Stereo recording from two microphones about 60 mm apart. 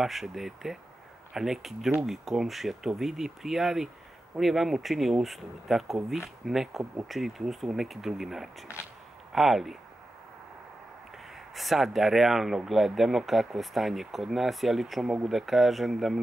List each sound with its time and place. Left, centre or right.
0.0 s speech: centre
8.7 s speech: left
9.3 s speech: centre
11.5 s speech: centre